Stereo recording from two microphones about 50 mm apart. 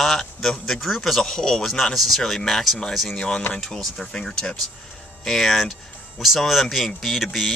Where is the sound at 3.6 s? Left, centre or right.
Centre.